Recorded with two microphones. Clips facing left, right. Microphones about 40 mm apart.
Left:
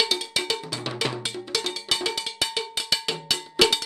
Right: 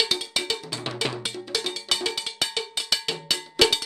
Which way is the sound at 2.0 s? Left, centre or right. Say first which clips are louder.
Left 1 dB; centre.